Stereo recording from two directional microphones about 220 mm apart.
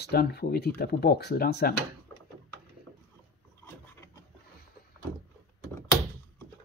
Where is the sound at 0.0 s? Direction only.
45° left (ahead or behind).